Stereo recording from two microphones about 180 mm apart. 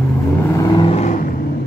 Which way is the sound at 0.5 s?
25° left (ahead or behind).